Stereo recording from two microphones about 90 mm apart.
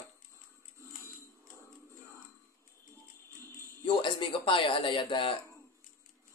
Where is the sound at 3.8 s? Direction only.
65° left (ahead or behind).